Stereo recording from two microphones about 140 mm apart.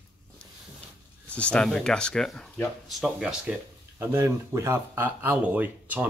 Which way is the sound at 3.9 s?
20° right (ahead or behind).